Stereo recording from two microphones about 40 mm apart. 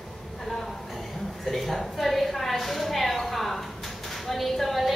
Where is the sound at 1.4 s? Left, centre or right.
Centre.